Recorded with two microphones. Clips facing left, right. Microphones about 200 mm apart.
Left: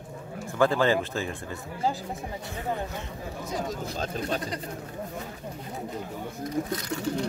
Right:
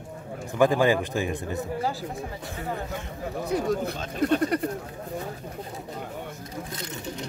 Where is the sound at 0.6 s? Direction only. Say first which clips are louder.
Right 2 dB; 15° right (ahead or behind).